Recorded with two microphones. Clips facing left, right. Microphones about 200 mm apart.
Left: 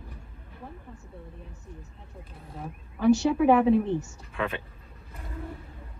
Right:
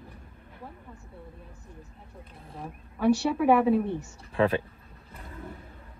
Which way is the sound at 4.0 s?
35° right (ahead or behind).